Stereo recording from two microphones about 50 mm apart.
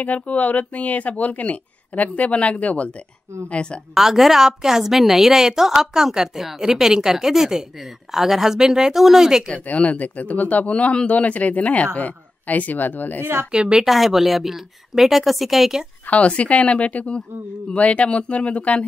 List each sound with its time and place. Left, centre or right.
0.0 s speech: left
3.9 s a woman's voice: centre
9.7 s speech: left
13.2 s speech: right
13.5 s a woman's voice: centre
13.8 s a woman's voice: centre
16.1 s speech: left